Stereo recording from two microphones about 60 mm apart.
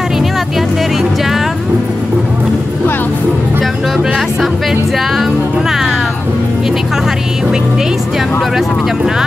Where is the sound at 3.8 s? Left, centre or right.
Centre.